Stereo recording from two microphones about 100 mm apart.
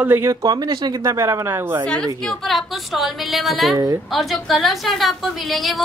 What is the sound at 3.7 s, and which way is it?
Speech, 35° right (ahead or behind).